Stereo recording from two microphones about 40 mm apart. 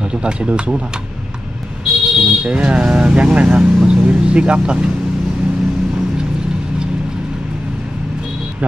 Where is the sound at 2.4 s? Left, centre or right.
Right.